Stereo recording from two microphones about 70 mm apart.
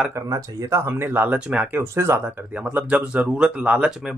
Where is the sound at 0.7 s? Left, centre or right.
Right.